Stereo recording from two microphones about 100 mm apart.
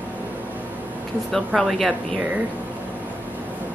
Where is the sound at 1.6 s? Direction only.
Centre (ahead or behind).